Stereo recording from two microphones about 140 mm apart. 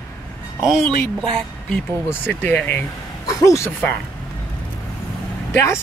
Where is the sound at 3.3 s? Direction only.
25° left (ahead or behind).